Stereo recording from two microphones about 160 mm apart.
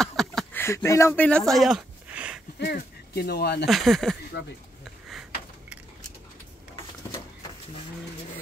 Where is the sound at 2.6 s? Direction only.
85° left.